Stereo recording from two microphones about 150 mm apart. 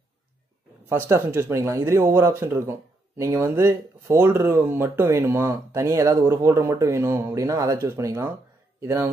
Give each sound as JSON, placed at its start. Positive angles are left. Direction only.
{"t": 0.8, "sound": "speech", "side_deg": -20}